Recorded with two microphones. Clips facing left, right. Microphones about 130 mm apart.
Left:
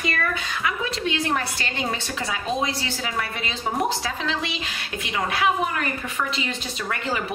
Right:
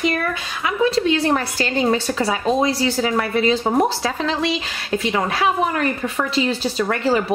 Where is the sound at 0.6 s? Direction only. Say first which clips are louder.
Right 10 dB; 35° right (ahead or behind).